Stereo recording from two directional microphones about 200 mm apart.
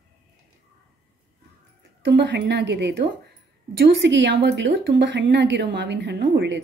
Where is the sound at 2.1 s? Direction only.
55° right (ahead or behind).